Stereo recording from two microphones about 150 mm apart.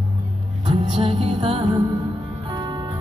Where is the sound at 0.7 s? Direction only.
40° right (ahead or behind).